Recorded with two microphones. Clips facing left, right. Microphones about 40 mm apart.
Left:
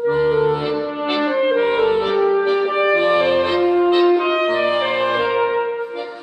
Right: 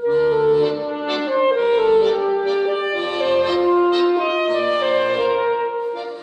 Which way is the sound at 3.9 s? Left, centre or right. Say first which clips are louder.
Left 2 dB; centre.